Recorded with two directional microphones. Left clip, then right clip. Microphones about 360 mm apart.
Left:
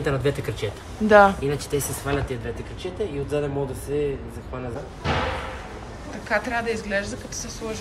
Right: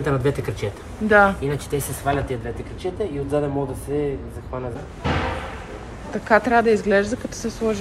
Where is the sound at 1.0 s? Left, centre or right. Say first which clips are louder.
Left 1 dB; centre.